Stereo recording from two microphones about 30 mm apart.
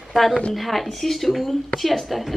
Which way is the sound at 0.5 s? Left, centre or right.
Centre.